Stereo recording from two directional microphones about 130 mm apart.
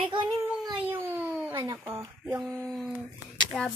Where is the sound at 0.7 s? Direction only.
15° right (ahead or behind).